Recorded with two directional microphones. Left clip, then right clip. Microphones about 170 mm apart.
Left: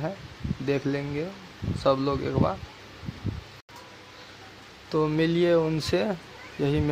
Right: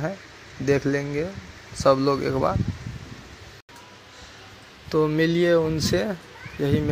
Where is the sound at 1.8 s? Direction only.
20° right (ahead or behind).